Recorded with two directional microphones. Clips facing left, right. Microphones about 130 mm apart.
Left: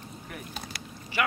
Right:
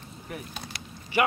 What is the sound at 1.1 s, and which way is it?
Speech, 20° right (ahead or behind).